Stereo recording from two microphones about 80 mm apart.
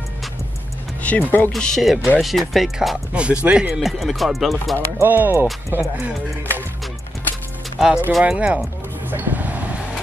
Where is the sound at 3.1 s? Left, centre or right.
Centre.